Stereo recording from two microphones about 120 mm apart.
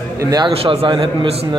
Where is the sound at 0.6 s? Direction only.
50° right (ahead or behind).